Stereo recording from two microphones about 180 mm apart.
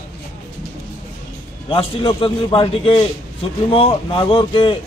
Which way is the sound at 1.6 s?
30° left (ahead or behind).